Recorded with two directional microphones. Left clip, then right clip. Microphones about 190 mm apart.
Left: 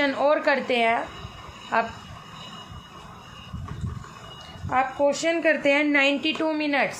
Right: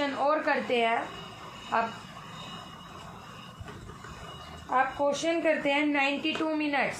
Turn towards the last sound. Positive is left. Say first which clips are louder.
# left 5 dB
turn(degrees=60)  # may be behind; listen again after turning